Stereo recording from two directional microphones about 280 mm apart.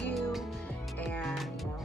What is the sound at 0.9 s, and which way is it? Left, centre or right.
Speech, centre.